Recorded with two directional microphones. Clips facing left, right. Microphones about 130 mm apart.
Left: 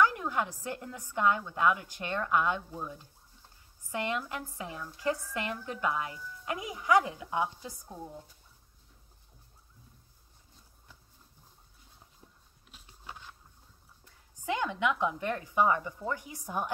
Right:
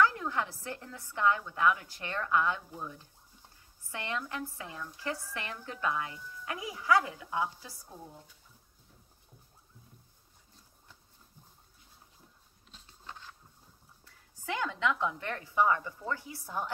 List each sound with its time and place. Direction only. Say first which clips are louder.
0.0 s a woman's voice: left 1 dB; 20° left (ahead or behind)
12.7 s patter: left 1 dB; 10° left (ahead or behind)
14.0 s speech: left 4 dB; 20° left (ahead or behind)